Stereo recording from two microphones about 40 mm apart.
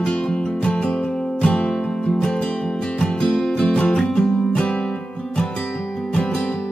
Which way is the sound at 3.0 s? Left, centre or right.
Centre.